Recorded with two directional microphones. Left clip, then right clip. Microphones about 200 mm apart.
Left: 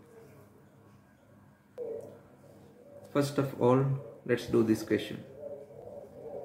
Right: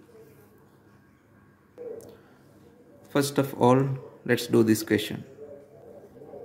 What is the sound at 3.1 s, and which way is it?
Speech, 50° right (ahead or behind).